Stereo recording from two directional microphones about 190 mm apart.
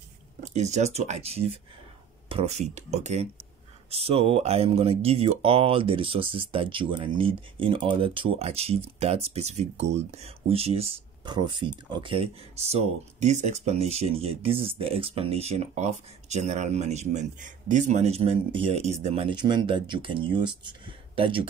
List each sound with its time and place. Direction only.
0.5 s speech: 35° right (ahead or behind)